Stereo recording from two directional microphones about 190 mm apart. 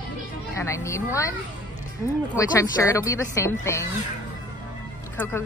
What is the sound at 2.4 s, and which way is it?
A woman's voice, 15° left (ahead or behind).